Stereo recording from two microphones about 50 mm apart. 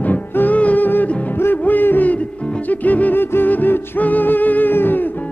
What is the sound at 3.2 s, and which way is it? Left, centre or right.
Music, left.